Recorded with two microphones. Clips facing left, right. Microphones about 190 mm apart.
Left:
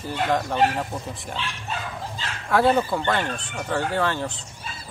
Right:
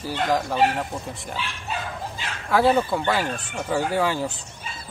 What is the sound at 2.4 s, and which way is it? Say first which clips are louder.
Speech: even; centre (ahead or behind).